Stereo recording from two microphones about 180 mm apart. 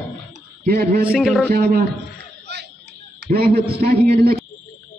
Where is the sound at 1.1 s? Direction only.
Centre (ahead or behind).